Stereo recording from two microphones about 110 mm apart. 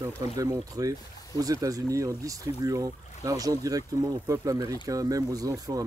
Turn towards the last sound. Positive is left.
turn(degrees=-30)  # may be behind; listen again after turning